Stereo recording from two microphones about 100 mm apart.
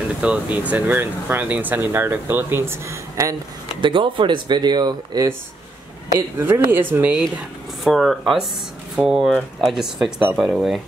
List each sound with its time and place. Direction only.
0.2 s speech: 15° right (ahead or behind); by 3.3 s 30° right (ahead or behind)
3.8 s speech: 55° right (ahead or behind); by 5.3 s 40° right (ahead or behind)
6.1 s speech: 25° right (ahead or behind)
7.8 s speech: centre (ahead or behind)